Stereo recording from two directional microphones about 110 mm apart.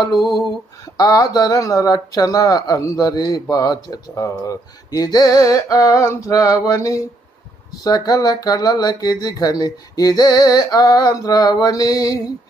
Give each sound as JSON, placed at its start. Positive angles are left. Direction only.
{"t": 0.9, "sound": "speech", "side_deg": 35}